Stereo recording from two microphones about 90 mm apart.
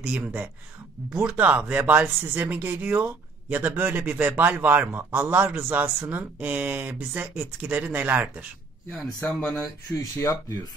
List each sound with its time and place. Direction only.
0.0 s speech: 15° right (ahead or behind)
9.6 s speech: 40° left (ahead or behind)